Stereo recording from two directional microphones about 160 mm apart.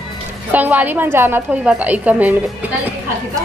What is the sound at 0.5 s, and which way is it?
A woman's voice, 10° right (ahead or behind).